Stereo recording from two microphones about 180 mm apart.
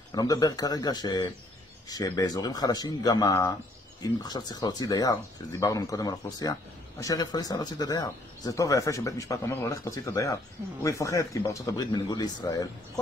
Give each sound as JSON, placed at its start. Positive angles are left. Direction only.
{"t": 0.1, "sound": "a man's voice", "side_deg": 20}